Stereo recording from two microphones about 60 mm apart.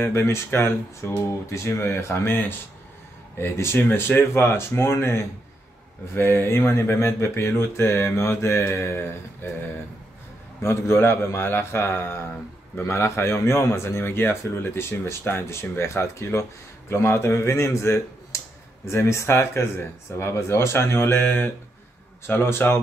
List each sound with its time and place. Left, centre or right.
0.5 s speech: left
3.3 s speech: left
8.2 s speech: left
10.6 s a man's voice: left